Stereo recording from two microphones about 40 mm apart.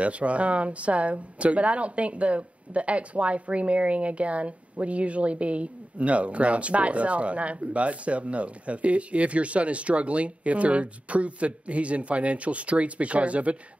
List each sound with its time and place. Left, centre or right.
0.0 s speech: right